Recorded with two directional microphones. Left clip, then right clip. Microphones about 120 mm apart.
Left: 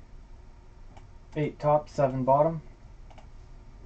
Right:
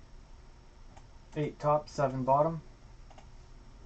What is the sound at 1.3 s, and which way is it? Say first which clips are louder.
Speech: left 4 dB; 15° left (ahead or behind).